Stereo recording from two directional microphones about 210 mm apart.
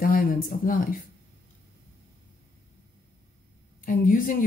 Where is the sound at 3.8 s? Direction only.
40° left (ahead or behind).